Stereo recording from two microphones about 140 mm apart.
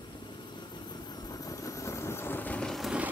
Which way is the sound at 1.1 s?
25° left (ahead or behind).